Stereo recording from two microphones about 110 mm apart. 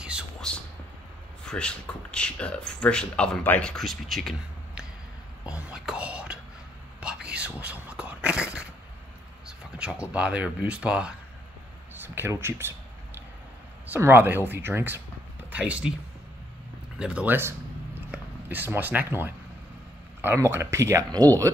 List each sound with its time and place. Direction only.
0.0 s a sound: 10° right (ahead or behind)
1.4 s speech: 10° left (ahead or behind)
5.5 s speech: 10° right (ahead or behind)
7.0 s whispering: 10° right (ahead or behind)
9.8 s speech: 10° right (ahead or behind)
11.9 s speech: 20° right (ahead or behind)
13.8 s speech: 20° right (ahead or behind)
17.0 s speech: 10° right (ahead or behind)
20.2 s a sound: 20° right (ahead or behind)
20.5 s speech: 25° right (ahead or behind)